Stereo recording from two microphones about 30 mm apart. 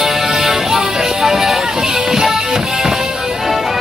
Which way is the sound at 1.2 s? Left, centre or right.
Centre.